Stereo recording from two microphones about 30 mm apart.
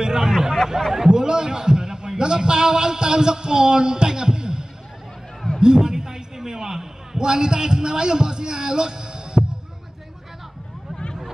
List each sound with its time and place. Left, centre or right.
0.2 s hubbub: centre
0.7 s speech: centre
1.1 s a sound: right
7.2 s a man's voice: right